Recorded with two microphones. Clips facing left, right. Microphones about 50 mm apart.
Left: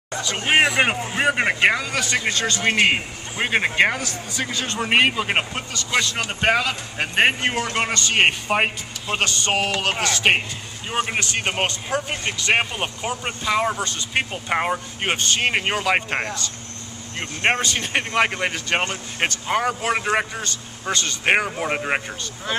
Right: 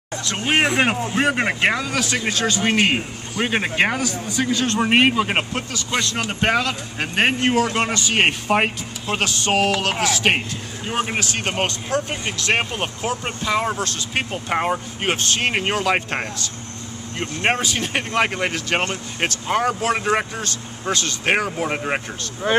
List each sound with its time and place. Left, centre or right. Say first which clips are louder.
0.1 s a sound: left 1 dB; centre
0.7 s speech: right 1 dB; centre
2.7 s speech: even; centre